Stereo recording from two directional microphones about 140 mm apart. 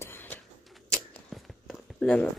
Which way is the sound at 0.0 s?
15° left (ahead or behind).